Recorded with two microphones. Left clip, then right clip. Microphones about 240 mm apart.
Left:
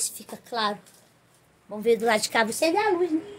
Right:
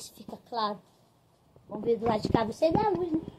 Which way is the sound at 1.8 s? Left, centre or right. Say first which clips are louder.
Left 6 dB; left.